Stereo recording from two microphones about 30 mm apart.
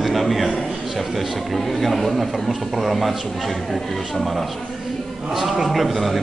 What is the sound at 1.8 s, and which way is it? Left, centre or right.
A man's voice, centre.